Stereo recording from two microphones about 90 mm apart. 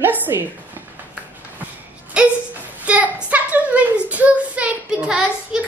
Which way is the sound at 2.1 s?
10° right (ahead or behind).